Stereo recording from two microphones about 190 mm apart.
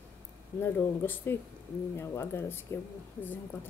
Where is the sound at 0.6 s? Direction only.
10° left (ahead or behind).